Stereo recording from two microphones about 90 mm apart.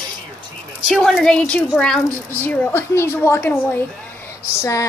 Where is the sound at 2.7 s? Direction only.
30° left (ahead or behind).